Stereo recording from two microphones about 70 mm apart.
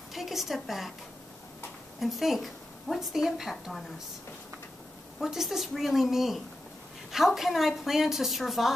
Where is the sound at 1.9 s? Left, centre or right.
Centre.